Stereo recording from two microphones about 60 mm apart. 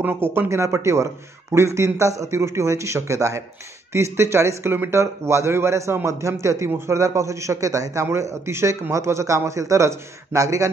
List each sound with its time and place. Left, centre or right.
0.3 s a man's voice: right